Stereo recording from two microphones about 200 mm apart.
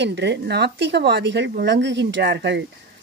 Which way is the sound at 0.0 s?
60° right (ahead or behind).